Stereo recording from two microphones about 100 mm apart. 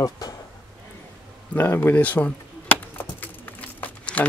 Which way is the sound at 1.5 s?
20° left (ahead or behind).